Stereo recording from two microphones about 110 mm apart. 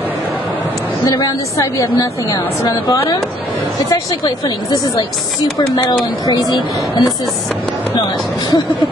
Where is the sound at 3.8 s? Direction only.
35° left (ahead or behind).